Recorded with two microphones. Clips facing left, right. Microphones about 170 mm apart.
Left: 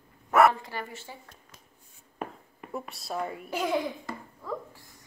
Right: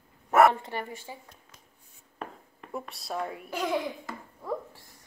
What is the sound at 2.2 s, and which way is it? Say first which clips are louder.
A child's voice: left 3 dB; 5° left (ahead or behind).